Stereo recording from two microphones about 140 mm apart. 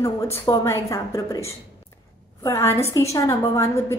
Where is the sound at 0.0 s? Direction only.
20° left (ahead or behind).